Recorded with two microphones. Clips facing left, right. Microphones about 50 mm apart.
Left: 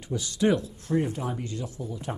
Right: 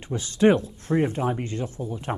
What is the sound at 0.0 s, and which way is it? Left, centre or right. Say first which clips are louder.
Speech: right 5 dB; right.